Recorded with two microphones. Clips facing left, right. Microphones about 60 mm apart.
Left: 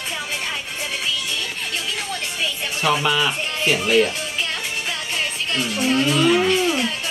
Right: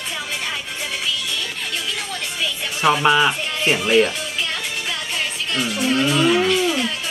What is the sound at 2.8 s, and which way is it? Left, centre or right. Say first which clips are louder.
Speech: right 4 dB; right.